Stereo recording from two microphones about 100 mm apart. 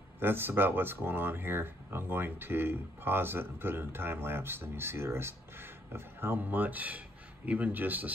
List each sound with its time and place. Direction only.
0.2 s speech: 25° right (ahead or behind)